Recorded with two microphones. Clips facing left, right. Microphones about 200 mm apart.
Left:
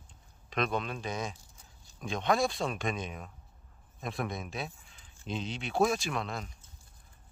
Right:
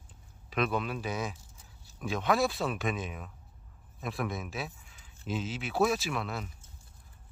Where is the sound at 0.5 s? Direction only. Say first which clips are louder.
Right 1 dB; 5° right (ahead or behind).